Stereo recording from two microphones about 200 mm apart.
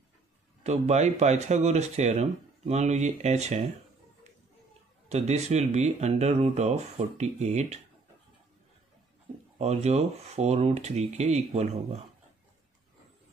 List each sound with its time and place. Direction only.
0.7 s speech: 35° right (ahead or behind)
5.1 s speech: 35° right (ahead or behind)
9.6 s speech: 35° right (ahead or behind)